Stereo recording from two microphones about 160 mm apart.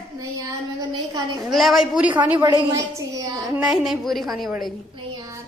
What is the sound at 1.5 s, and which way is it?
Speech, centre (ahead or behind).